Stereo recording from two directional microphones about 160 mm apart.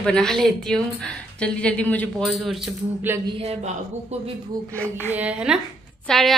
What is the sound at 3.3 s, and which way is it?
Speech, 40° right (ahead or behind).